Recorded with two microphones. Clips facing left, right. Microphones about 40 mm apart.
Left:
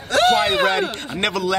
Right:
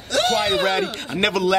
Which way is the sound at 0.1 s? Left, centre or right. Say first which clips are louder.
Left 4 dB; left.